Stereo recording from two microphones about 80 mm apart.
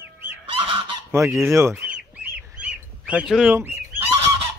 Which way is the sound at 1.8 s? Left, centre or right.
Centre.